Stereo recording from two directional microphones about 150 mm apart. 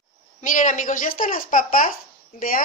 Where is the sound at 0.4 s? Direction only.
55° left (ahead or behind).